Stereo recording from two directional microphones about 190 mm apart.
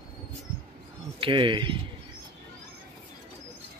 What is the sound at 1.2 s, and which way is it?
Speech, 25° right (ahead or behind).